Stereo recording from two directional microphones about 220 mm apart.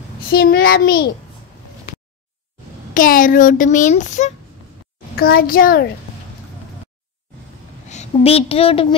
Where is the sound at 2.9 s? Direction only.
40° left (ahead or behind).